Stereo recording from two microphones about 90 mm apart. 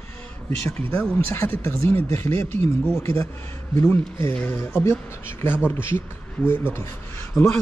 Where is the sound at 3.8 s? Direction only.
20° left (ahead or behind).